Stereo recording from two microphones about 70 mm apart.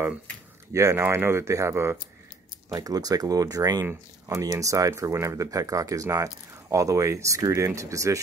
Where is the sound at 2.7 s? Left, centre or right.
Right.